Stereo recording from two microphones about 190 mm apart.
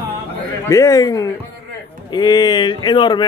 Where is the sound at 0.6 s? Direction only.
15° left (ahead or behind).